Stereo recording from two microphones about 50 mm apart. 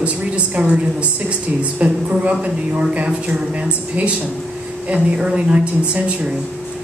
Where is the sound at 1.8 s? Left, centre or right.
Right.